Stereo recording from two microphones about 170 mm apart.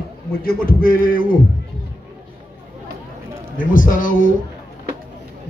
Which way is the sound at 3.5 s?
55° left (ahead or behind).